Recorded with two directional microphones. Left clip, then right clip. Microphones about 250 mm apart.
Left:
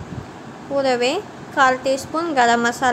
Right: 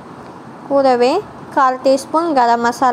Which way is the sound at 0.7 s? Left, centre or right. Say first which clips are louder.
Right 7 dB; centre.